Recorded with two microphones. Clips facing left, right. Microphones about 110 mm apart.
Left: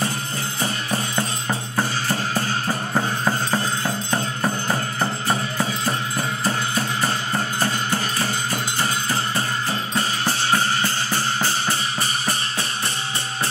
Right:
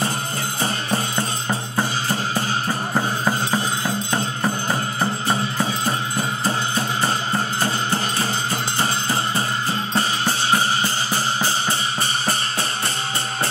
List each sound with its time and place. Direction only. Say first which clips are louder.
0.6 s music: right 2 dB; 30° right (ahead or behind)
1.8 s drum: even; 15° right (ahead or behind)
2.9 s music: even; 10° right (ahead or behind)
5.3 s music: right 1 dB; 20° right (ahead or behind)
10.5 s music: right 1 dB; 15° right (ahead or behind)